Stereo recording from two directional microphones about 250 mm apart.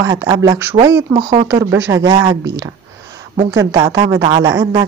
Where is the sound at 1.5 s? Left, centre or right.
Centre.